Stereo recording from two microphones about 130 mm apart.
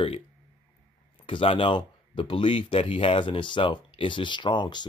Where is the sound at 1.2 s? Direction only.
45° left (ahead or behind).